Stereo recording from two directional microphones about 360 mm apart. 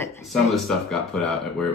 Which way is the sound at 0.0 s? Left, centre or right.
Centre.